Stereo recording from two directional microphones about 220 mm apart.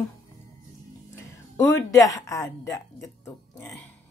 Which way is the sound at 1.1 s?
15° left (ahead or behind).